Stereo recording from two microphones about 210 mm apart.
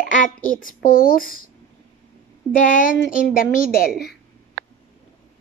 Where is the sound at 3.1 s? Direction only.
40° left (ahead or behind).